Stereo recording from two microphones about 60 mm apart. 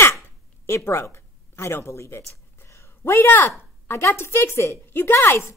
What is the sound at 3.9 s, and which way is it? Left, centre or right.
A woman's voice, left.